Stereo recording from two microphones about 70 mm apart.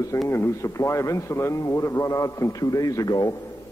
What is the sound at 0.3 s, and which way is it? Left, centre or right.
A man's voice, left.